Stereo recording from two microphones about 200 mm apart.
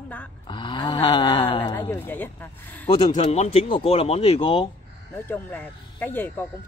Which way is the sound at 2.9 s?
30° left (ahead or behind).